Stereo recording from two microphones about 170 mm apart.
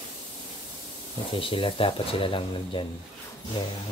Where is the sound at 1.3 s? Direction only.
30° left (ahead or behind).